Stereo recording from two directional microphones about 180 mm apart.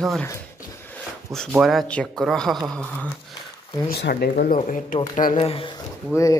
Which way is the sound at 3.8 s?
60° left (ahead or behind).